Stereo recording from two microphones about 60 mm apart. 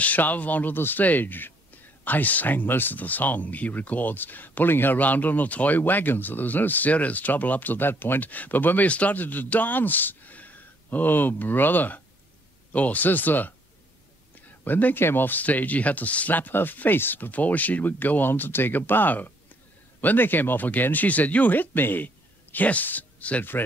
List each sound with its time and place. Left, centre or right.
0.0 s speech: left
14.6 s speech: left